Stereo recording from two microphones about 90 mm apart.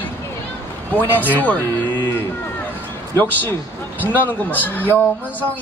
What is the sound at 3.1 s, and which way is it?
Speech, 20° left (ahead or behind).